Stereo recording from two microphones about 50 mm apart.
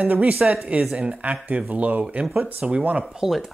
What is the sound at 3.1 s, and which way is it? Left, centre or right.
Speech, centre.